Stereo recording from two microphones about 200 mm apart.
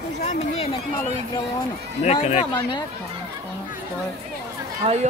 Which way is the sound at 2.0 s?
35° left (ahead or behind).